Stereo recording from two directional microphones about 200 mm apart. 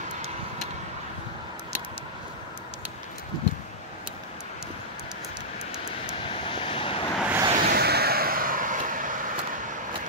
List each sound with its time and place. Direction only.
5.9 s vehicle: 25° left (ahead or behind)
7.2 s vehicle: 10° right (ahead or behind)
7.5 s vehicle: 45° right (ahead or behind)